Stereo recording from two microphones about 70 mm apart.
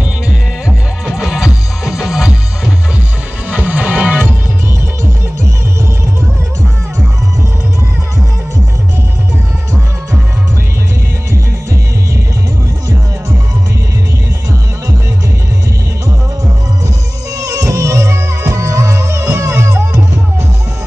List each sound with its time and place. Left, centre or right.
0.7 s music: centre
3.4 s music: centre
17.4 s music: right